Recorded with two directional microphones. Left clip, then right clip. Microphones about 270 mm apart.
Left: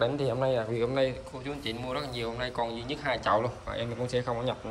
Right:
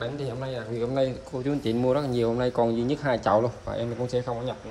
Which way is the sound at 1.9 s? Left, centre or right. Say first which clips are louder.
Right 10 dB; right.